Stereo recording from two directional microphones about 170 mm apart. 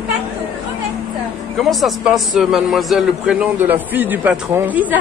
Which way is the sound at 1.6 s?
Centre (ahead or behind).